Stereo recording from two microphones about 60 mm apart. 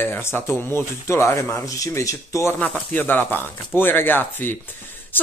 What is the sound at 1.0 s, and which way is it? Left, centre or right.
Speech, left.